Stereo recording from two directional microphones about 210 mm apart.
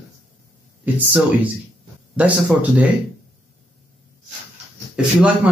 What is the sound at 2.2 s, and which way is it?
Speech, 5° right (ahead or behind).